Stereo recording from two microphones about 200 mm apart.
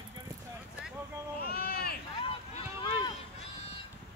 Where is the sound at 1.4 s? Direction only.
50° left (ahead or behind).